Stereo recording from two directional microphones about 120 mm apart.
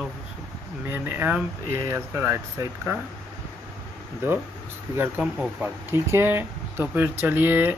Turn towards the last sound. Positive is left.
turn(degrees=-15)  # may be behind; listen again after turning